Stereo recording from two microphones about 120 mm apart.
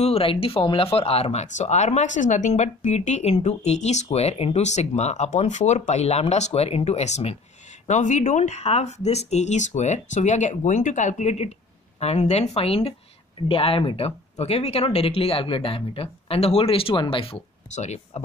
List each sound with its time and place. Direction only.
0.0 s speech: 55° left (ahead or behind)
7.8 s speech: 85° left; by 17.4 s 50° left (ahead or behind)
17.7 s speech: 70° left (ahead or behind)